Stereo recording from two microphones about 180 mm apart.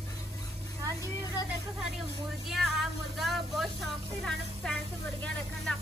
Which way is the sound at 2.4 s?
5° right (ahead or behind).